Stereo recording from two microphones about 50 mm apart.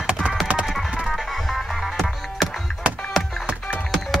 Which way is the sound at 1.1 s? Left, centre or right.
Centre.